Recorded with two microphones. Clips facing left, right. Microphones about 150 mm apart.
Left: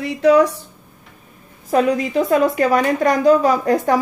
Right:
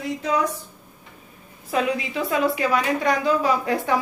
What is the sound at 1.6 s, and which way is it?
A woman's voice, 45° left (ahead or behind).